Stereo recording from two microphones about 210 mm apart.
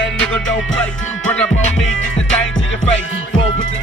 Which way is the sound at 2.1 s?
65° left (ahead or behind).